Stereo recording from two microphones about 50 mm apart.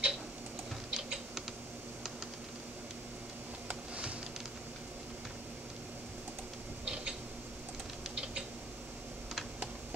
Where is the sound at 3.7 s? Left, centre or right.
Right.